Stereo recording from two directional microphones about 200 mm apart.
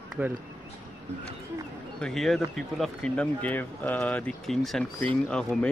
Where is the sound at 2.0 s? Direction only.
Centre (ahead or behind).